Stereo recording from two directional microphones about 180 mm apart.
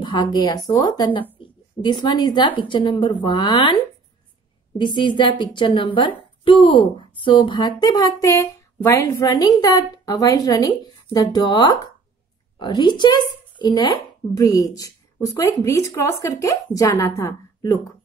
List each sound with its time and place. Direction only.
0.0 s a woman's voice: 25° left (ahead or behind)
4.7 s a woman's voice: 25° left (ahead or behind)